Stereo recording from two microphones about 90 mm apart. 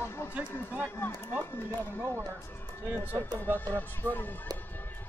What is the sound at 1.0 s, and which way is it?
Speech, 25° left (ahead or behind).